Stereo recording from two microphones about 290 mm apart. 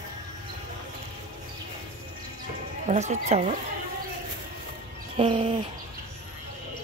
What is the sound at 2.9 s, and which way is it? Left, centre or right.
Speech, right.